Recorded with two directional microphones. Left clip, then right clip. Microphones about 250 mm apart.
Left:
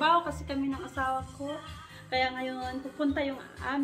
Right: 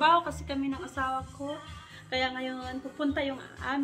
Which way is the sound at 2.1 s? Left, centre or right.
Centre.